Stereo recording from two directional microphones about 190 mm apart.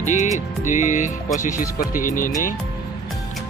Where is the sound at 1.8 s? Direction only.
45° left (ahead or behind).